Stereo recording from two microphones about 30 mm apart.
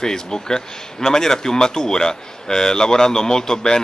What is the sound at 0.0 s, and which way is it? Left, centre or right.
Speech, left.